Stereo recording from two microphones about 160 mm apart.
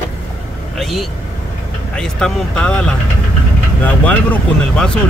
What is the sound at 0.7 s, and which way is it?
Speech, centre (ahead or behind).